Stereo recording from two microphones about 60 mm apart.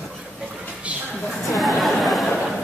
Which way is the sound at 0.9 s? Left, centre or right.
Right.